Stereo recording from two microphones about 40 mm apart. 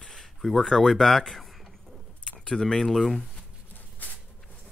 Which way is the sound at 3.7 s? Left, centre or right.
Left.